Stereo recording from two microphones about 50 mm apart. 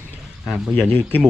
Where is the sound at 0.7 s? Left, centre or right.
Left.